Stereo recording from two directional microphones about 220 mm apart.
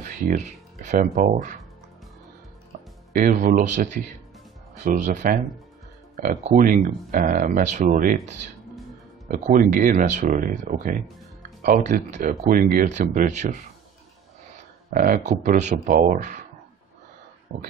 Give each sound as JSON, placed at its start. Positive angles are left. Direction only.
{"t": 0.0, "sound": "speech", "side_deg": -35}
{"t": 3.1, "sound": "speech", "side_deg": -40}
{"t": 9.3, "sound": "speech", "side_deg": -35}
{"t": 14.9, "sound": "speech", "side_deg": -40}